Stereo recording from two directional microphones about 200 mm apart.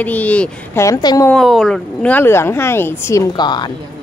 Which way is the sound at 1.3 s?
Centre (ahead or behind).